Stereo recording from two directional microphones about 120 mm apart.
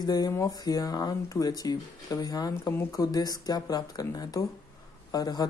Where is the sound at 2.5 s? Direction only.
20° left (ahead or behind).